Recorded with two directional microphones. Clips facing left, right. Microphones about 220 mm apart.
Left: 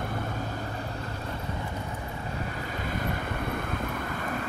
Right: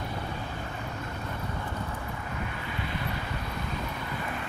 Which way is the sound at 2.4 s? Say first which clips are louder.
Left 2 dB; 40° left (ahead or behind).